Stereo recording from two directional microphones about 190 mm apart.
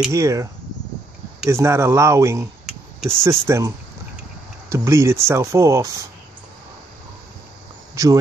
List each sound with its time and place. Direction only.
0.1 s speech: 15° right (ahead or behind)
7.9 s speech: 15° right (ahead or behind)